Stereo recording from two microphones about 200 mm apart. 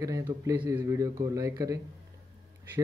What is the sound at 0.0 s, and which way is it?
A man's voice, 15° right (ahead or behind).